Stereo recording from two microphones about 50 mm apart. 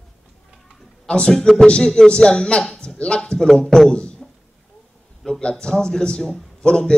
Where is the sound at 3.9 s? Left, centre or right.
Left.